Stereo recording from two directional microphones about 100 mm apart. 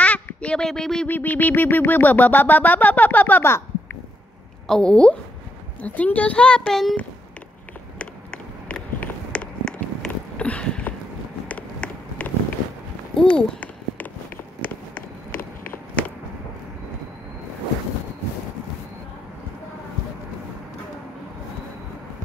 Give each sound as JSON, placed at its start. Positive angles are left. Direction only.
{"t": 0.0, "sound": "quack", "side_deg": 15}
{"t": 1.1, "sound": "synthesizer", "side_deg": 15}
{"t": 4.6, "sound": "synthesizer", "side_deg": 5}
{"t": 8.0, "sound": "run", "side_deg": 10}
{"t": 10.3, "sound": "a sound", "side_deg": 15}
{"t": 13.1, "sound": "walk", "side_deg": 5}